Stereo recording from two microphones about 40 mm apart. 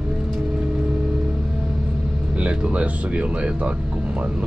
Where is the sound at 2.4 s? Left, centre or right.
Right.